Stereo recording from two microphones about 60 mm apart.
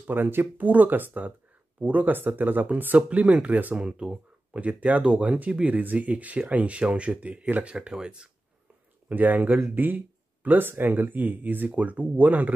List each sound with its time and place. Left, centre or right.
0.0 s speech: right; by 8.3 s centre
9.1 s speech: right